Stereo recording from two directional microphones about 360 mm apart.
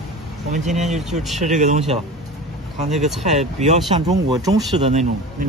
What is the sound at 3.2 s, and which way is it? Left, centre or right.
Speech, centre.